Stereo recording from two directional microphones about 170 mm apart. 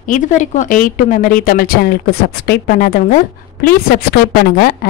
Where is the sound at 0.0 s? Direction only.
50° left (ahead or behind).